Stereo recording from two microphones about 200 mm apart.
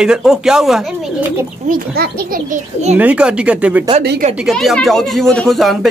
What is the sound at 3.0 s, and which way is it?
Speech, 5° right (ahead or behind).